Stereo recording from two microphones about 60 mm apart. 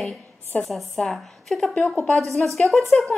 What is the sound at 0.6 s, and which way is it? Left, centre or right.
A woman's voice, centre.